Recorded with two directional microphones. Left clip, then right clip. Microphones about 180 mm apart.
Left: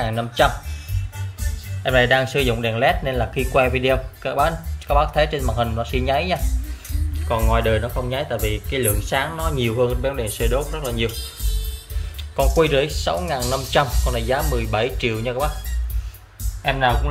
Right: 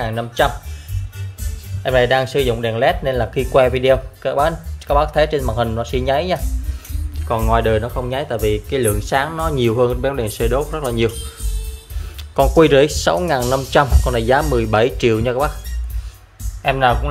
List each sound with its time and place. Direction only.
0.0 s speech: 15° right (ahead or behind)
1.8 s speech: 15° right (ahead or behind)
7.2 s speech: 35° right (ahead or behind)
12.4 s speech: 50° right (ahead or behind)
16.6 s speech: 30° right (ahead or behind)